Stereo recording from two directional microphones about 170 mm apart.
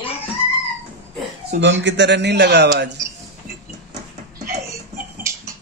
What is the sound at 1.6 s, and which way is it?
Speech, 90° right.